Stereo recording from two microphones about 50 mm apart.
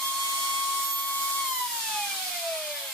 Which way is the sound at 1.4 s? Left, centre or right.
Centre.